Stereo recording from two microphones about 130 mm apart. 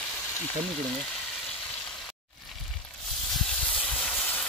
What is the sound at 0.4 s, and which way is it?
Speech, 5° left (ahead or behind).